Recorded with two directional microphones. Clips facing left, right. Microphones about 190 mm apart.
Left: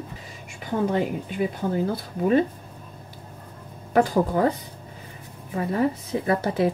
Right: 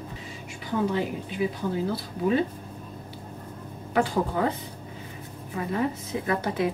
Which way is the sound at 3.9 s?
40° left (ahead or behind).